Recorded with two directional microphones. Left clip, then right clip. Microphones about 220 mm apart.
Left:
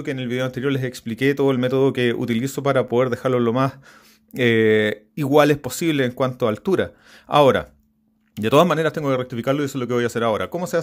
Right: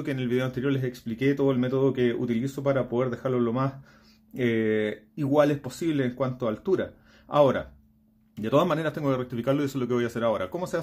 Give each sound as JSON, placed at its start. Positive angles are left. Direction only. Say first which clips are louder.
{"t": 0.0, "sound": "a man's voice", "louder": "left 4 dB", "side_deg": 25}
{"t": 8.6, "sound": "speech", "louder": "left 6 dB", "side_deg": 30}